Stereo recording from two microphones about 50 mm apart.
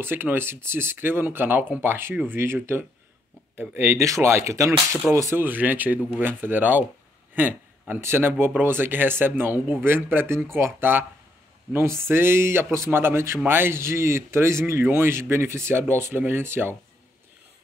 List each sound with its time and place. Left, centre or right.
0.0 s speech: right
4.0 s speech: right
5.1 s speech: right
5.4 s speech: right
8.0 s speech: right
11.8 s speech: right